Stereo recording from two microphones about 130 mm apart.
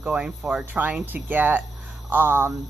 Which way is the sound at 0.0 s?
10° right (ahead or behind).